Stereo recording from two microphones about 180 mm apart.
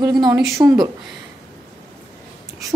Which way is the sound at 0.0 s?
20° right (ahead or behind).